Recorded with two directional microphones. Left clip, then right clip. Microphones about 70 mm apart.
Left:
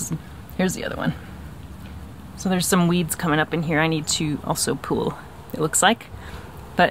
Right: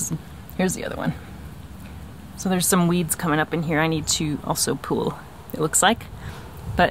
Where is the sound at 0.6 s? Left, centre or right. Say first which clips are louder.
Left 1 dB; centre.